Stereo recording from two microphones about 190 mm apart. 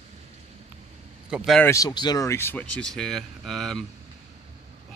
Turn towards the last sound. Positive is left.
turn(degrees=0)  # may be behind; listen again after turning